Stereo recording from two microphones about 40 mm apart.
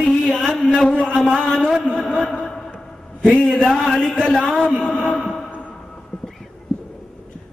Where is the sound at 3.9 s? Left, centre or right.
Left.